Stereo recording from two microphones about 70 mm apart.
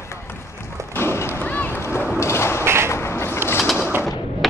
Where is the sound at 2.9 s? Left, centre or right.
Left.